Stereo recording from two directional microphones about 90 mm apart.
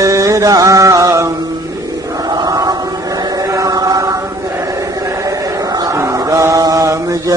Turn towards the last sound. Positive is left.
turn(degrees=-35)  # may be behind; listen again after turning